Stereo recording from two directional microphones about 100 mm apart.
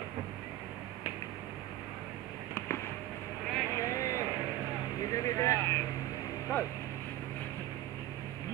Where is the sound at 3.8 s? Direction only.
30° left (ahead or behind).